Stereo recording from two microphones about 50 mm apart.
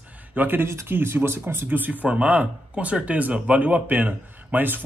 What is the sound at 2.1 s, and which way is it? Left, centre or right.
Speech, right.